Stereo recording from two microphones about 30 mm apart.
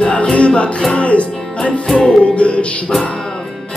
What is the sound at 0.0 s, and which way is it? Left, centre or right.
Music, left.